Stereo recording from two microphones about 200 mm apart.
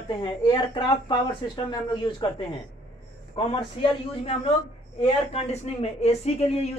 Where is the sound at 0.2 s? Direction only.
25° left (ahead or behind).